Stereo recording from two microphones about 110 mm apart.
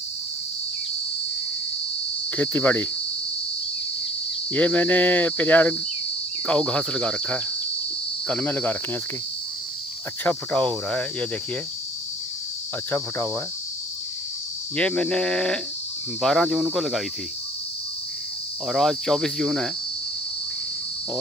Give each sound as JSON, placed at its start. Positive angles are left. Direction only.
{"t": 2.3, "sound": "cricket", "side_deg": 15}
{"t": 4.5, "sound": "cricket", "side_deg": 10}
{"t": 10.2, "sound": "cricket", "side_deg": 10}
{"t": 12.9, "sound": "cricket", "side_deg": 20}
{"t": 14.8, "sound": "cricket", "side_deg": 10}
{"t": 18.7, "sound": "cricket", "side_deg": 5}